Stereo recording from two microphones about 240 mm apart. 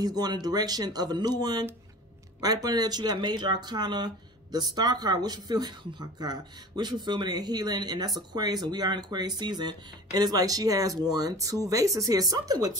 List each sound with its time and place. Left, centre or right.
0.0 s speech: centre